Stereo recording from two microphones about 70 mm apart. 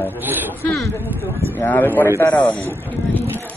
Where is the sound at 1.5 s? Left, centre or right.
Left.